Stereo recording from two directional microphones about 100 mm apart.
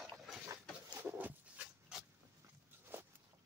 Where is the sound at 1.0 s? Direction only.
20° right (ahead or behind).